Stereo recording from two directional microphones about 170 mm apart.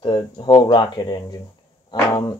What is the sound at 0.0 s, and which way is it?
Speech, 25° left (ahead or behind).